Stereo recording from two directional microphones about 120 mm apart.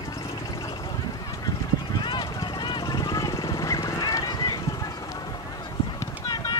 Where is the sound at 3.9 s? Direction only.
25° left (ahead or behind).